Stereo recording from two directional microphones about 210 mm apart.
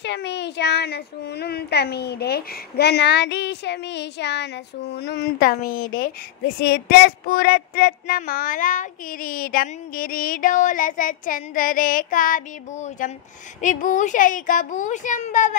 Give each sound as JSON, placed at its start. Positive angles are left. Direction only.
{"t": 0.0, "sound": "speech", "side_deg": 55}